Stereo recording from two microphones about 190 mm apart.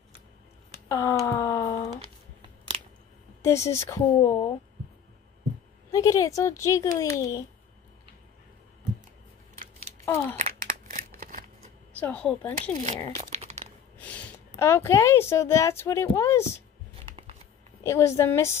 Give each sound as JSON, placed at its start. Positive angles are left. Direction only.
{"t": 0.8, "sound": "a sound", "side_deg": 15}
{"t": 3.4, "sound": "speech", "side_deg": 15}
{"t": 5.9, "sound": "speech", "side_deg": 15}
{"t": 10.0, "sound": "a child's voice", "side_deg": 15}
{"t": 10.3, "sound": "crumpling", "side_deg": -40}
{"t": 12.0, "sound": "speech", "side_deg": 5}
{"t": 13.3, "sound": "a sound", "side_deg": -35}
{"t": 13.9, "sound": "a woman's voice", "side_deg": 10}
{"t": 16.9, "sound": "a sound", "side_deg": -35}
{"t": 17.8, "sound": "speech", "side_deg": 15}